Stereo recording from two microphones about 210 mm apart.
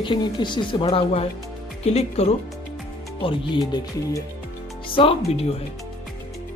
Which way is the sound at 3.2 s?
20° left (ahead or behind).